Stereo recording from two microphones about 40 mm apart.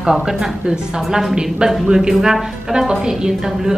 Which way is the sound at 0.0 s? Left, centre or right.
Centre.